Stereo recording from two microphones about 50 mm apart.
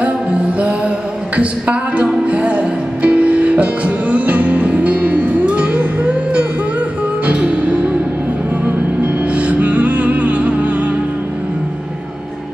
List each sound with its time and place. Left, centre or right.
0.6 s music: right